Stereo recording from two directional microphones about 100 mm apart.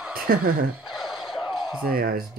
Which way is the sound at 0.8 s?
5° right (ahead or behind).